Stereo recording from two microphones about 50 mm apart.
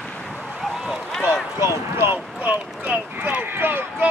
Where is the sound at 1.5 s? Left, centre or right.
Right.